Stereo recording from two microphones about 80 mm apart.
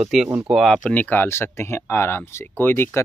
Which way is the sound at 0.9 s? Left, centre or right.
Left.